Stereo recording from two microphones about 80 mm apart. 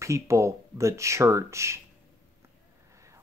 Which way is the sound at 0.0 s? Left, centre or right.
Right.